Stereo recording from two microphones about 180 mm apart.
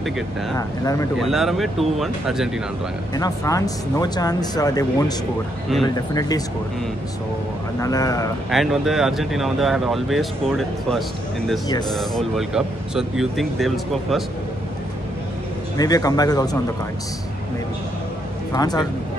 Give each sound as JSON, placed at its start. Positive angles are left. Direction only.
{"t": 0.6, "sound": "speech", "side_deg": 20}
{"t": 1.2, "sound": "speech", "side_deg": 0}
{"t": 3.2, "sound": "speech", "side_deg": 20}
{"t": 7.8, "sound": "speech", "side_deg": 20}
{"t": 8.5, "sound": "speech", "side_deg": 0}
{"t": 15.8, "sound": "speech", "side_deg": 20}
{"t": 18.5, "sound": "speech", "side_deg": 20}